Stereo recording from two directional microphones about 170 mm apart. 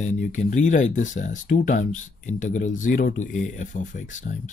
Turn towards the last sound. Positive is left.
turn(degrees=45)  # may be behind; listen again after turning